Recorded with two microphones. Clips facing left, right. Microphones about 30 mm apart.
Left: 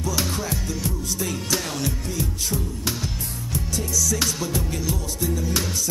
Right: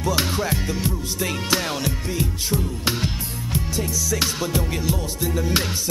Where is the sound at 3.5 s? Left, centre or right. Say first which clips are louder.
Even; right.